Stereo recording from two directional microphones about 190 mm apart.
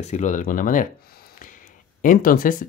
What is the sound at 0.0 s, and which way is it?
Speech, 40° left (ahead or behind).